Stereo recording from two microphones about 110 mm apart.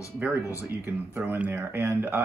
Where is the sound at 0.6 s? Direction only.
15° right (ahead or behind).